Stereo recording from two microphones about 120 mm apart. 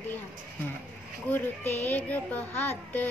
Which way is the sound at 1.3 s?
15° left (ahead or behind).